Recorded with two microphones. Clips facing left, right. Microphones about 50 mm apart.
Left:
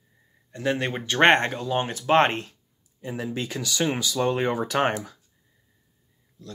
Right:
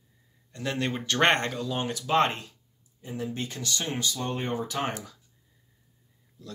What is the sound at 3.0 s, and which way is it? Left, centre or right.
Speech, left.